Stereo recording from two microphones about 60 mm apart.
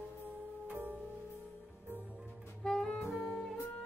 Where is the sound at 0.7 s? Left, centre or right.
Right.